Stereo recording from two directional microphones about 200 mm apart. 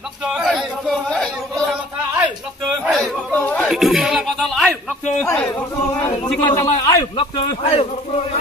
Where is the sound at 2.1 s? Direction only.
10° right (ahead or behind).